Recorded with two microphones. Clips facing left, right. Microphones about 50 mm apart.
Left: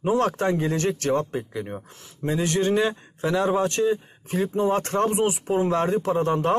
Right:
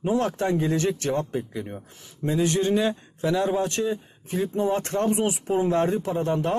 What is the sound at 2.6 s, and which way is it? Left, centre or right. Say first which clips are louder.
Speech: left 4 dB; left.